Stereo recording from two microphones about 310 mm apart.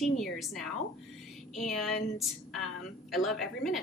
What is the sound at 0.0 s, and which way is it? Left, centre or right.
A woman's voice, centre.